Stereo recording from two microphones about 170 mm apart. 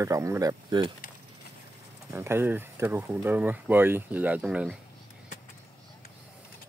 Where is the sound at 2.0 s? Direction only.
15° right (ahead or behind).